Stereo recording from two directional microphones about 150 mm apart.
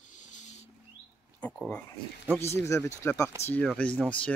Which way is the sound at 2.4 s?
20° left (ahead or behind).